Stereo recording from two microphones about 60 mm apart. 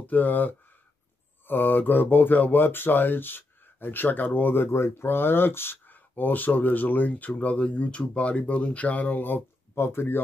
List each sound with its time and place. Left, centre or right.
0.0 s speech: left